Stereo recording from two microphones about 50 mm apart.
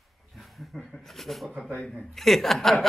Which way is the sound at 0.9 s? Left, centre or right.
Centre.